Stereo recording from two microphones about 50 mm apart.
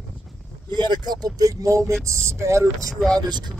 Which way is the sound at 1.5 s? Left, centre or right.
Right.